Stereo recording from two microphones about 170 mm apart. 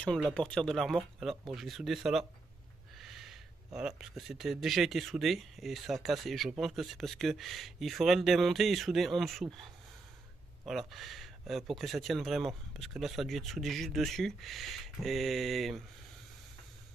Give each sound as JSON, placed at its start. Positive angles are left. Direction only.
{"t": 0.3, "sound": "speech", "side_deg": 5}